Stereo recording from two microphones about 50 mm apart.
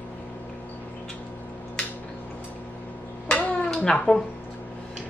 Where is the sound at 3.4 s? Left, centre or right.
Left.